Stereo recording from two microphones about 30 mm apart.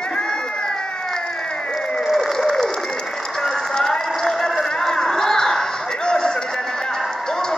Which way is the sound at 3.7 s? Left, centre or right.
Centre.